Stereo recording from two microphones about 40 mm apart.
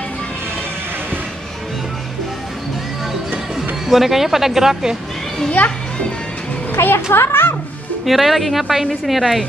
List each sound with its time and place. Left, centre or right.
3.8 s speech: centre
5.6 s a child's voice: left
6.7 s a woman's voice: left
8.0 s speech: centre